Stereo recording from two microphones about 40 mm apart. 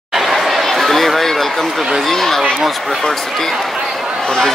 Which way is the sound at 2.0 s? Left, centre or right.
Centre.